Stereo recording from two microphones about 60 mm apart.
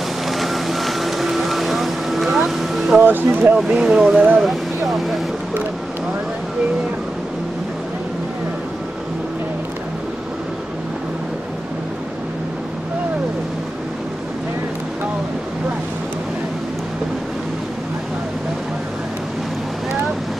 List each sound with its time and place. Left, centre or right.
0.4 s boat: centre
3.0 s speech: right
3.5 s speech: centre
4.4 s vehicle: centre